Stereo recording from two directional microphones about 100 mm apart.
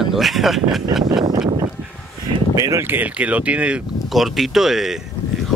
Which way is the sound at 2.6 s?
35° right (ahead or behind).